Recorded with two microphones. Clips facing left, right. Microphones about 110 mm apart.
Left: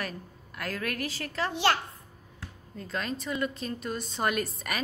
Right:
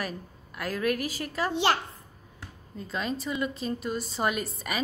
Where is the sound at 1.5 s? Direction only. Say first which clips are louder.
Right 1 dB; 20° right (ahead or behind).